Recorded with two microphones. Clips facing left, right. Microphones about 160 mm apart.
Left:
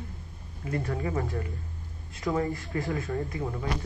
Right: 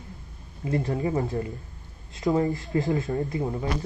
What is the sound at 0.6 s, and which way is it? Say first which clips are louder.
Speech: right 5 dB; 25° right (ahead or behind).